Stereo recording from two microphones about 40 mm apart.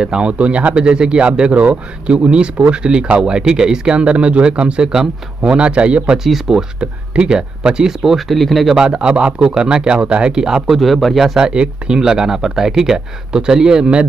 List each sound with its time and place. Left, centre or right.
0.0 s speech: centre
0.3 s speech: right
0.8 s speech: right
4.0 s speech: right
6.1 s speech: centre
6.8 s speech: right
8.0 s speech: centre
8.3 s speech: centre
8.7 s speech: right
10.7 s speech: centre
11.3 s speech: right